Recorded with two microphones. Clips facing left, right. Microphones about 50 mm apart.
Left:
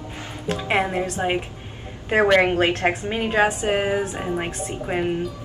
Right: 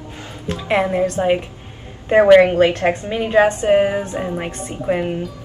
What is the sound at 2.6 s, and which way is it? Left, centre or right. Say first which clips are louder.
Speech: right 5 dB; left.